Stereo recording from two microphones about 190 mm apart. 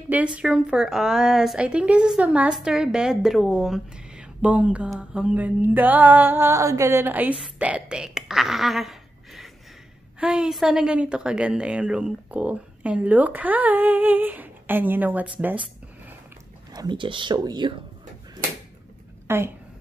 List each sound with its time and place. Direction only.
0.1 s a woman's voice: 5° right (ahead or behind)
7.5 s a sound: 5° right (ahead or behind)
10.2 s a woman's voice: 5° right (ahead or behind)
16.7 s speech: 25° right (ahead or behind)
19.2 s a woman's voice: 10° right (ahead or behind)